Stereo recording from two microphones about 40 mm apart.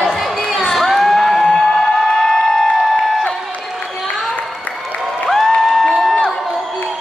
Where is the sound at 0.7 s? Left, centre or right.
Centre.